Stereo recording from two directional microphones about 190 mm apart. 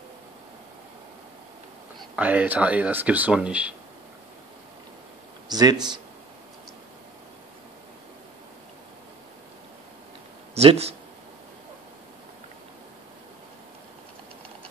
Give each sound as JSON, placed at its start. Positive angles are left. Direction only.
{"t": 2.0, "sound": "speech", "side_deg": -5}
{"t": 5.5, "sound": "speech", "side_deg": -20}
{"t": 10.5, "sound": "speech", "side_deg": -35}